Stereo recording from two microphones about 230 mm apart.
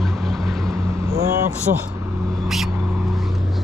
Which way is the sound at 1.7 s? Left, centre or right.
Right.